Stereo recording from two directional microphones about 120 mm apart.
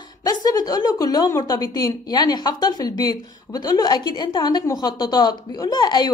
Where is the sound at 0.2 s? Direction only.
35° left (ahead or behind).